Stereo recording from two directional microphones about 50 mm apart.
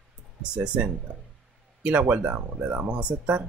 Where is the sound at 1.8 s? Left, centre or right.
Right.